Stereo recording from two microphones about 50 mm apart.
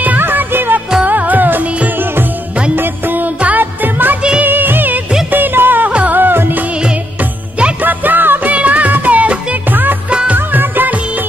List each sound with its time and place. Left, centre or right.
0.2 s music: right
1.0 s music: right
2.7 s music: right
4.4 s music of bollywood: right
5.3 s music: right
5.9 s music: right
6.1 s music: right
7.8 s music: right
8.5 s music: right
10.3 s music: right